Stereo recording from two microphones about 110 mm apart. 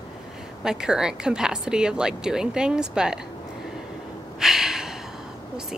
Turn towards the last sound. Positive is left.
turn(degrees=-5)  # may be behind; listen again after turning